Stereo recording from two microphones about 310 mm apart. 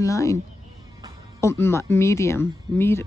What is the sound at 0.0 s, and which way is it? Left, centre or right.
Speech, centre.